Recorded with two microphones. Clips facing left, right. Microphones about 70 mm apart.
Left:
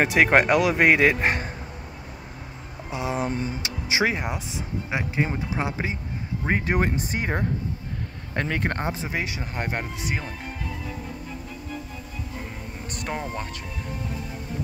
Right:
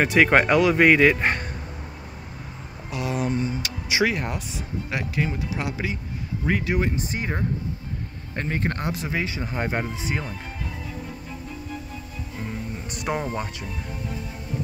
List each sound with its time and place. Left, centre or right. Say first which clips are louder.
0.0 s speech: right 1 dB; centre
2.9 s speech: right 1 dB; left
6.7 s speech: left 1 dB; left
8.4 s speech: left 1 dB; left
8.8 s speech: right 1 dB; centre
13.0 s speech: right 4 dB; centre